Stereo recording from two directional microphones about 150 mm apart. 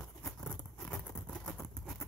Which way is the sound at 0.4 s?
5° left (ahead or behind).